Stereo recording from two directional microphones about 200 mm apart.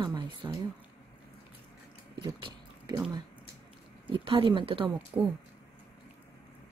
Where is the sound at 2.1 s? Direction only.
20° right (ahead or behind).